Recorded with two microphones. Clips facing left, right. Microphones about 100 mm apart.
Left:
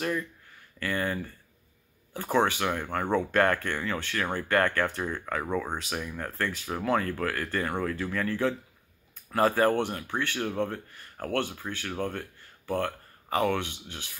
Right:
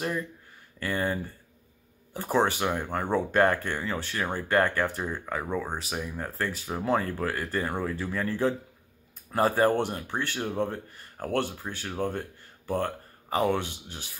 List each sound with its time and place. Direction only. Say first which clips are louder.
0.7 s speech: right 1 dB; 20° right (ahead or behind)